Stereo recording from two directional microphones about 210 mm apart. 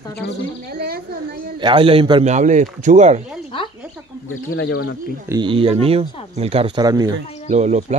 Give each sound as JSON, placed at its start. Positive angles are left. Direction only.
{"t": 0.7, "sound": "a woman's voice", "side_deg": -45}
{"t": 1.6, "sound": "speech", "side_deg": -25}
{"t": 2.3, "sound": "speech", "side_deg": -35}
{"t": 4.3, "sound": "speech", "side_deg": 70}
{"t": 5.3, "sound": "speech", "side_deg": -25}
{"t": 7.4, "sound": "speech", "side_deg": -35}